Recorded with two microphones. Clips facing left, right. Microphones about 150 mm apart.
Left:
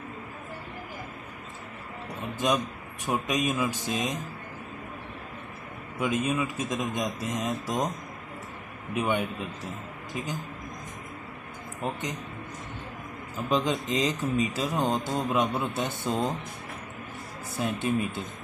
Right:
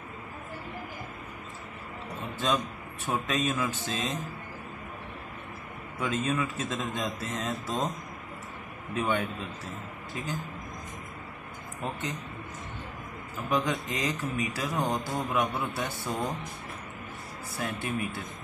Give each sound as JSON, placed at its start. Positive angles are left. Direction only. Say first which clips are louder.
{"t": 2.4, "sound": "speech", "louder": "left 2 dB", "side_deg": 15}
{"t": 5.9, "sound": "speech", "louder": "left 2 dB", "side_deg": 15}
{"t": 8.9, "sound": "speech", "louder": "left 2 dB", "side_deg": 15}
{"t": 13.5, "sound": "speech", "louder": "left 2 dB", "side_deg": 20}
{"t": 17.6, "sound": "speech", "louder": "left 5 dB", "side_deg": 20}